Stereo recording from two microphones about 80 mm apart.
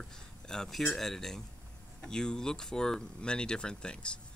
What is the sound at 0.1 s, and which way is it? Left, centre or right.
Speech, centre.